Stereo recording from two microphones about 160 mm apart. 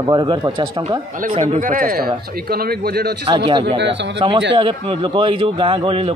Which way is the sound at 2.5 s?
80° right.